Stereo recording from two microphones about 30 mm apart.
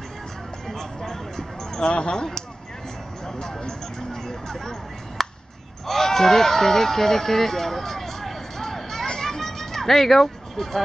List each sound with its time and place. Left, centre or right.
0.7 s a sound: centre
1.9 s speech: left
3.3 s speech: centre
9.2 s children playing: centre